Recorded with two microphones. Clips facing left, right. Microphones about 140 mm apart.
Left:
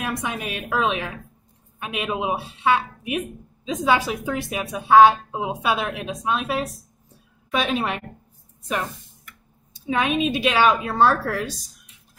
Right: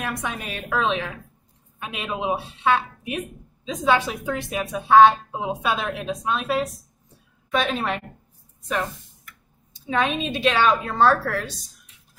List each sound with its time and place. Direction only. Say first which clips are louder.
0.0 s a woman's voice: left 2 dB; 10° left (ahead or behind)
9.8 s a woman's voice: left 2 dB; 10° left (ahead or behind)